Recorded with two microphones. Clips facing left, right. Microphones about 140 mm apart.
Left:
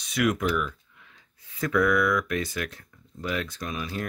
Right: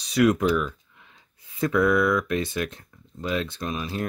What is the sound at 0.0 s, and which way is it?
Speech, 35° right (ahead or behind).